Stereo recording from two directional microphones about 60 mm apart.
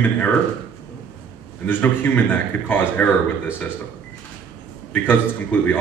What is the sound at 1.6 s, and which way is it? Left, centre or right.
A man's voice, left.